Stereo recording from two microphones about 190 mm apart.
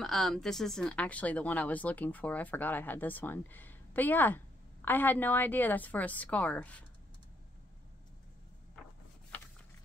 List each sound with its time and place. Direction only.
0.0 s a woman's voice: centre (ahead or behind)